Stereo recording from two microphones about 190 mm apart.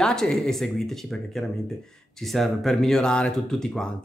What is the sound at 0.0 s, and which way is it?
Speech, 5° left (ahead or behind).